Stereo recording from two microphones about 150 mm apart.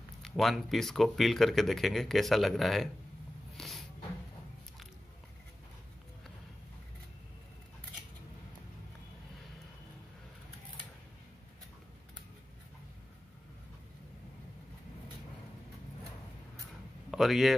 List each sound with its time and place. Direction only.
0.2 s speech: centre (ahead or behind)
3.5 s a sound: centre (ahead or behind)
17.1 s speech: centre (ahead or behind)